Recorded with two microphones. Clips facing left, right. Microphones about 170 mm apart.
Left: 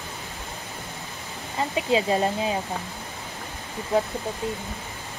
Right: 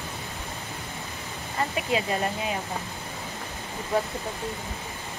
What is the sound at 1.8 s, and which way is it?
Speech, 25° left (ahead or behind).